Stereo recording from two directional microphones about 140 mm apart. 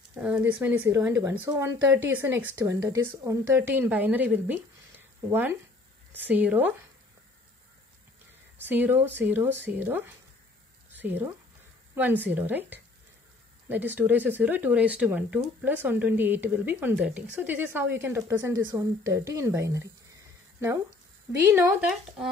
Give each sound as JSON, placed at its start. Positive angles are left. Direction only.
{"t": 0.1, "sound": "speech", "side_deg": -10}
{"t": 8.6, "sound": "speech", "side_deg": -15}
{"t": 21.5, "sound": "speech", "side_deg": -15}